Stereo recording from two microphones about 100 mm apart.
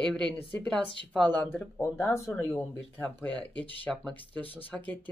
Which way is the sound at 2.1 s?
20° left (ahead or behind).